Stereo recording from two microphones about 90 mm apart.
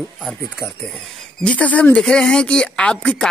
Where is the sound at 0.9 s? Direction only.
Centre (ahead or behind).